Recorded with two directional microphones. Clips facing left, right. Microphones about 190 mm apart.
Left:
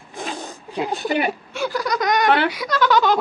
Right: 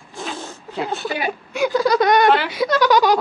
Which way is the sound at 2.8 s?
15° right (ahead or behind).